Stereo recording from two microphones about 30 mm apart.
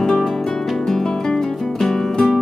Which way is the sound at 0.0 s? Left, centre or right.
Left.